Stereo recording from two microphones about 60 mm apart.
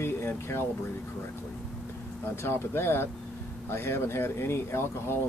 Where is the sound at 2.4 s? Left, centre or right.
Left.